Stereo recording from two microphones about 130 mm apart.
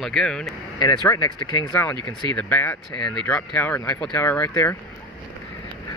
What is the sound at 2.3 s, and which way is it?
Speech, 10° left (ahead or behind).